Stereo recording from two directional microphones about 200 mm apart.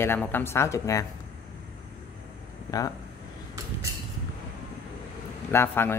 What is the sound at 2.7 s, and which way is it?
Speech, 20° left (ahead or behind).